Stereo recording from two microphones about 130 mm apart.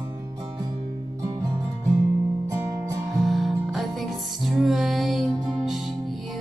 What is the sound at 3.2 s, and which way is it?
Music, centre (ahead or behind).